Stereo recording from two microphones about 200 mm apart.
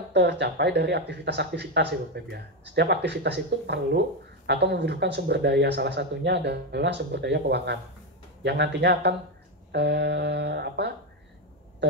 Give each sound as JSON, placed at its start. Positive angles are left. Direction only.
{"t": 0.1, "sound": "speech", "side_deg": -60}